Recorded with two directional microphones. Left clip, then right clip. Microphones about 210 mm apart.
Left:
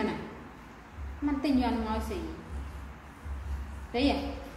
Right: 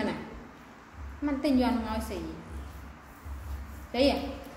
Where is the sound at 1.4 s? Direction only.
20° right (ahead or behind).